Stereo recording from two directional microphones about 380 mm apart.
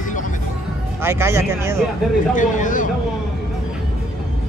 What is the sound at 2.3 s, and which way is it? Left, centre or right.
Speech, centre.